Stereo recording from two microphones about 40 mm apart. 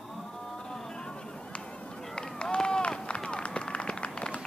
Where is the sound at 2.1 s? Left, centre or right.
Left.